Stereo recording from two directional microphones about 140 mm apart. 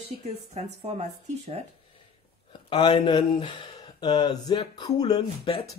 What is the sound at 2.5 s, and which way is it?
Speech, 30° left (ahead or behind).